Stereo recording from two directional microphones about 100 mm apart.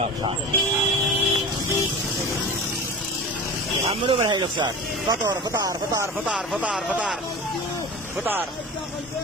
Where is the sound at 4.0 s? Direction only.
75° right (ahead or behind).